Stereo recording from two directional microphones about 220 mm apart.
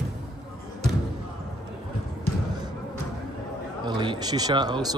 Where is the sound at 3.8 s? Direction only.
20° right (ahead or behind).